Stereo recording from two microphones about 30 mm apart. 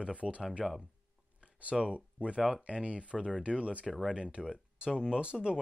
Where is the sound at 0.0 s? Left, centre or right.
Right.